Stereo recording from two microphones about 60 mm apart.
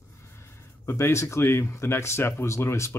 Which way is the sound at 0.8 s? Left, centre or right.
Left.